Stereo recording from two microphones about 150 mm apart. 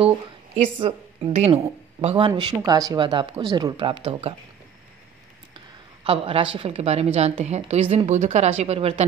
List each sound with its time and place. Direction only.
0.7 s a woman's voice: 35° right (ahead or behind)
6.0 s speech: 40° right (ahead or behind)